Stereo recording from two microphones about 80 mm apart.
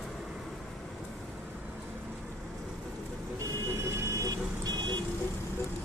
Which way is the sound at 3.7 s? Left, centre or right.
Right.